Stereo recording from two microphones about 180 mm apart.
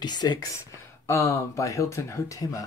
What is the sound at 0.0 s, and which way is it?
Speech, 25° left (ahead or behind).